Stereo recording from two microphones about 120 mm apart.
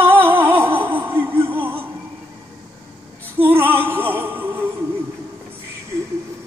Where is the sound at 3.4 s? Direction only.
15° right (ahead or behind).